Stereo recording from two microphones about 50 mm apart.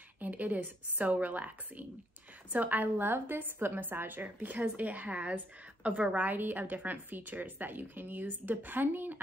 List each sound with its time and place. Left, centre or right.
0.2 s a woman's voice: right